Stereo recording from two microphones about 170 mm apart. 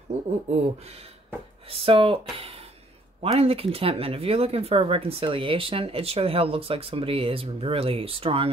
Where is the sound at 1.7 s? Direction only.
30° right (ahead or behind).